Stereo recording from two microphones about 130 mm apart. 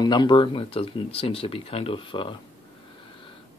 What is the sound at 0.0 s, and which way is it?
Speech, 35° left (ahead or behind).